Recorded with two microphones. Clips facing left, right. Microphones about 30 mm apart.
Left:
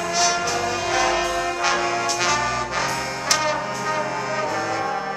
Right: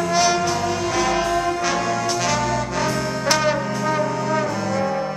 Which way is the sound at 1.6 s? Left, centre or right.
Centre.